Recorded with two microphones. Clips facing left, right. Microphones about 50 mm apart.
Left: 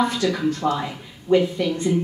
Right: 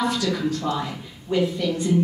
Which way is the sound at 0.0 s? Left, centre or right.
Centre.